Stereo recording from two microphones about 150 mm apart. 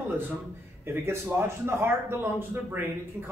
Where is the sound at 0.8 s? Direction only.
15° right (ahead or behind).